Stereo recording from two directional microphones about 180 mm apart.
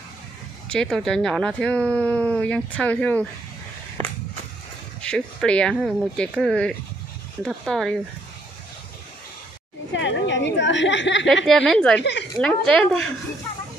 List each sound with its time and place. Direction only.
0.7 s speech: 5° left (ahead or behind)
5.0 s speech: 5° left (ahead or behind)
9.9 s a woman's voice: 90° left
11.4 s speech: centre (ahead or behind)
12.0 s speech: 70° left (ahead or behind)
12.4 s speech: 5° left (ahead or behind)